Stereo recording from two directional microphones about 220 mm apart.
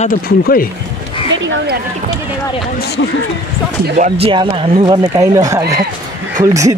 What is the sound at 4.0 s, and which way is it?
Speech, 25° right (ahead or behind).